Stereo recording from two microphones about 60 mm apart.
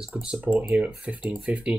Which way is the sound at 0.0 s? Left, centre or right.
Centre.